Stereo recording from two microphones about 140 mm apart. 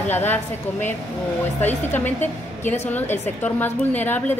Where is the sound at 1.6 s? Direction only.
15° left (ahead or behind).